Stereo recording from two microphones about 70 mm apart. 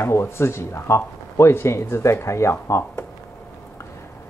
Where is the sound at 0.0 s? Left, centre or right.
Left.